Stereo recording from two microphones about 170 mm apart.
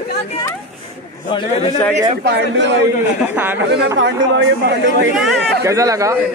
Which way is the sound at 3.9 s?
90° right.